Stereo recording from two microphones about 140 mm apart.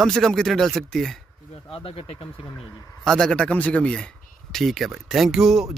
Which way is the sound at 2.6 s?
5° left (ahead or behind).